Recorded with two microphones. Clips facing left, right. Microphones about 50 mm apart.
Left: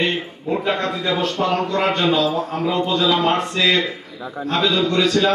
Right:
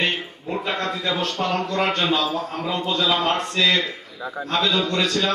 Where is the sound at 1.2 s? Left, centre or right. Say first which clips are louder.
Left 4 dB; centre.